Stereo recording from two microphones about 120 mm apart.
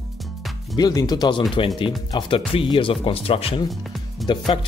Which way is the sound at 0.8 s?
35° left (ahead or behind).